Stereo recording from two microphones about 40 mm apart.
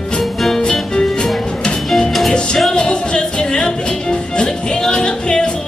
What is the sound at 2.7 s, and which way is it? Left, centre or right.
Music, centre.